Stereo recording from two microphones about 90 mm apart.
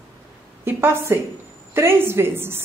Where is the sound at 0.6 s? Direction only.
25° right (ahead or behind).